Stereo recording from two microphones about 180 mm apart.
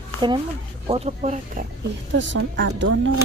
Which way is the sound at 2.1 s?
90° right.